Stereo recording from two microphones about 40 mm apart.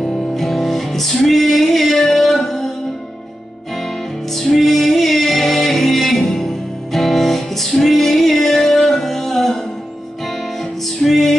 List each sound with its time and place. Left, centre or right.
0.0 s music: centre
4.3 s music: centre
11.0 s music: centre